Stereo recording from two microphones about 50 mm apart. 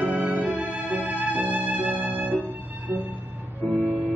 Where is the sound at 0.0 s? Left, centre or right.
Right.